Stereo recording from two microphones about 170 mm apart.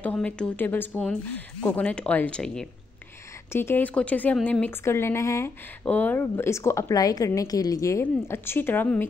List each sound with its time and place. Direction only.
0.0 s speech: 10° left (ahead or behind)